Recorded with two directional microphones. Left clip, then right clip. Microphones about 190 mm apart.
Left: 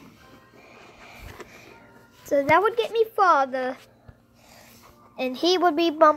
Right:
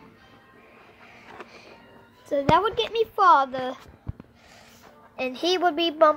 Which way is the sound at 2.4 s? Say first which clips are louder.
Left 1 dB; 5° left (ahead or behind).